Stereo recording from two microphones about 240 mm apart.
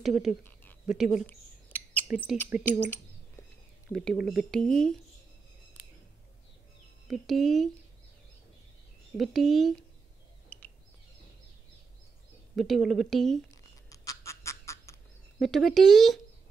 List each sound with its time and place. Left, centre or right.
0.0 s speech: centre
0.4 s a sound: centre
2.5 s speech: left
3.9 s speech: centre
7.1 s speech: centre
9.1 s speech: centre
10.5 s a sound: centre
12.5 s speech: centre
13.5 s duck: centre
15.3 s speech: centre